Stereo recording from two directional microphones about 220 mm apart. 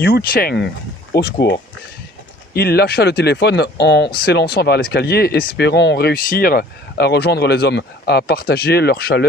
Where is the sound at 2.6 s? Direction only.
45° left (ahead or behind).